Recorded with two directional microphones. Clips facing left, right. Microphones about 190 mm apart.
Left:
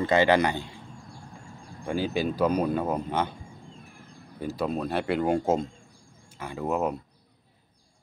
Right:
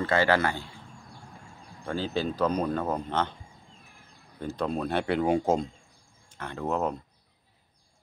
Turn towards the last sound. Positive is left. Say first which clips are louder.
# left 1 dB
turn(degrees=10)  # may be behind; listen again after turning